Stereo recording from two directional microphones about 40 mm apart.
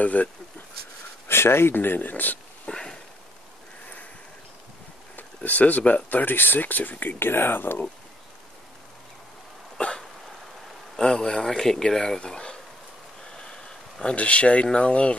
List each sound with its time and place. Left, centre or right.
0.0 s speech: left
1.2 s speech: left
2.7 s a sound: centre
5.1 s speech: left
7.2 s speech: left
9.8 s hiccup: left
11.0 s speech: centre
12.2 s a sound: left
14.1 s speech: left